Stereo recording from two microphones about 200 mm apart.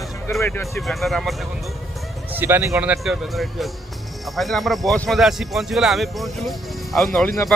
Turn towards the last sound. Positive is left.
turn(degrees=0)  # may be behind; listen again after turning